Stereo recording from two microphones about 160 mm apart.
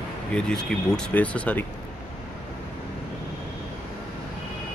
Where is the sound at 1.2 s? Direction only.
10° left (ahead or behind).